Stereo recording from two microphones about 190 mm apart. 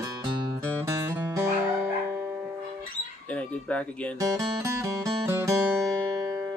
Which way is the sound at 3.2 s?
5° left (ahead or behind).